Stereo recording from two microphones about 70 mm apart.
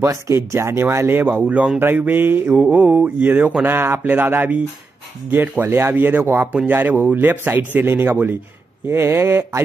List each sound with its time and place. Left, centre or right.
0.4 s speech: right; by 1.8 s centre
1.8 s speech: right
6.5 s speech: right